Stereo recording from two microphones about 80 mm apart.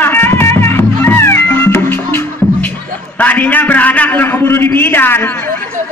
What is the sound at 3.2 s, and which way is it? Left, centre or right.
A man's voice, left.